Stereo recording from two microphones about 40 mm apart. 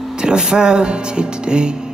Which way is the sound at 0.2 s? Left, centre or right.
Centre.